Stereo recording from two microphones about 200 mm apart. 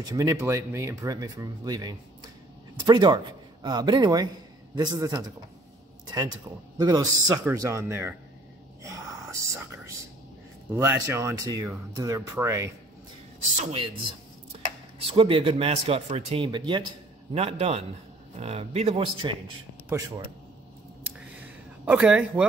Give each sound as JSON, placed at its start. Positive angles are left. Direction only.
{"t": 0.0, "sound": "a man's voice", "side_deg": -20}
{"t": 6.8, "sound": "speech", "side_deg": -20}
{"t": 8.8, "sound": "whispering", "side_deg": -15}
{"t": 10.7, "sound": "speech", "side_deg": -10}
{"t": 13.6, "sound": "a man's voice", "side_deg": -30}
{"t": 19.9, "sound": "speech", "side_deg": -10}
{"t": 21.8, "sound": "speech", "side_deg": -5}